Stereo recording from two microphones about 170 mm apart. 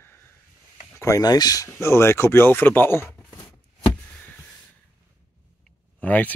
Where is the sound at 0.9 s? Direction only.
20° left (ahead or behind).